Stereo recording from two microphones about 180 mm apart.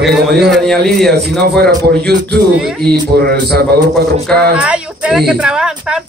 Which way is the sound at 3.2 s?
60° right (ahead or behind).